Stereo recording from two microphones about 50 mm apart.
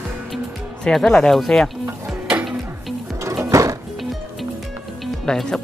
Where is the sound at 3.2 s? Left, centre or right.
Right.